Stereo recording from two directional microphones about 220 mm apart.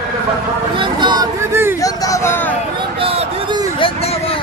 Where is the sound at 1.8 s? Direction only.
15° left (ahead or behind).